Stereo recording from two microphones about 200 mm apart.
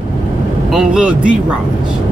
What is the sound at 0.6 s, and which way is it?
Speech, 5° right (ahead or behind).